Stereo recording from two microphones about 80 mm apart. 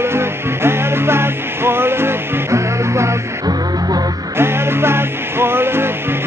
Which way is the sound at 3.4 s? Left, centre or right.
Right.